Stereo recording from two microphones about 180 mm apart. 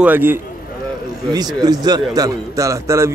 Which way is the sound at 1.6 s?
20° right (ahead or behind).